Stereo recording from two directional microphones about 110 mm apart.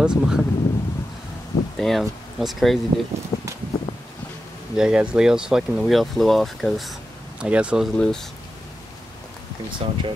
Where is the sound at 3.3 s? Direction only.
35° left (ahead or behind).